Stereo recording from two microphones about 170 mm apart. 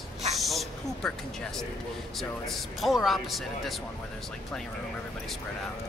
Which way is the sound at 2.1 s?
Centre (ahead or behind).